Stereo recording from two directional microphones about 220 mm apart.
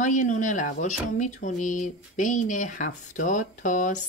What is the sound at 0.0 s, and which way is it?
Speech, 35° left (ahead or behind).